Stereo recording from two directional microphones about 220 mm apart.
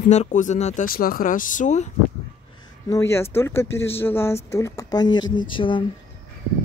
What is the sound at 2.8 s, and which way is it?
Speech, 15° left (ahead or behind).